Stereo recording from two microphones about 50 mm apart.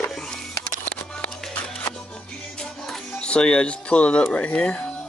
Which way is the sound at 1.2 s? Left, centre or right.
Left.